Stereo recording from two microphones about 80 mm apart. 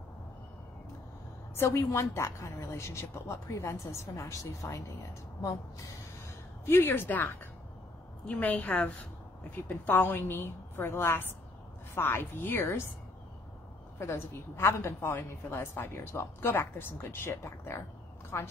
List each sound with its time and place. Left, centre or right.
1.5 s a woman's voice: left
6.6 s a woman's voice: left
8.3 s a woman's voice: centre
13.9 s a woman's voice: left